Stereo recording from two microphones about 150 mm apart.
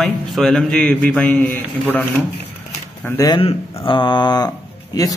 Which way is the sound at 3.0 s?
25° left (ahead or behind).